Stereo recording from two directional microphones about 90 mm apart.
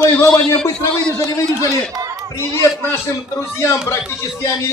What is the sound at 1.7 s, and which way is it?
Speech, 40° right (ahead or behind).